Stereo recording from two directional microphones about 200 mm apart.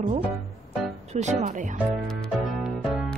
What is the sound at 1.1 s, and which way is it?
Music, 35° right (ahead or behind).